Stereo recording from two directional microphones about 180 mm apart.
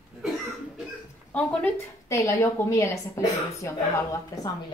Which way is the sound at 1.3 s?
5° left (ahead or behind).